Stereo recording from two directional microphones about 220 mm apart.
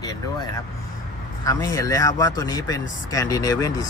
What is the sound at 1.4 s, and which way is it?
Speech, 15° left (ahead or behind).